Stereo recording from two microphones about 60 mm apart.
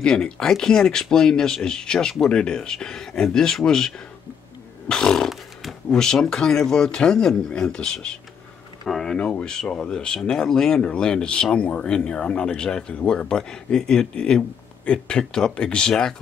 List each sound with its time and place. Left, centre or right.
0.0 s speech: centre
4.8 s a sound: centre
5.3 s wild animals: centre
5.9 s speech: centre
8.8 s a sound: centre
9.1 s speech: centre